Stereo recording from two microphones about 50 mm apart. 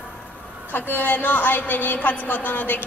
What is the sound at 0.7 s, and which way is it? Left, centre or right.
A woman's voice, left.